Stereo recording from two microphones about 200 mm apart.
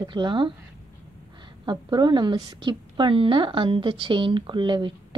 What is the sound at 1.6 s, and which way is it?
A woman's voice, 20° right (ahead or behind).